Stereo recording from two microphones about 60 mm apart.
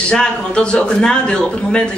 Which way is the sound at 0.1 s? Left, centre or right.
Centre.